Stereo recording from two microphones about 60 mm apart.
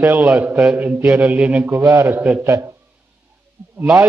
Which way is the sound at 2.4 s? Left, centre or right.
Right.